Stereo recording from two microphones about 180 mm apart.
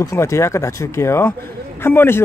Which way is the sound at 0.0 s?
15° left (ahead or behind).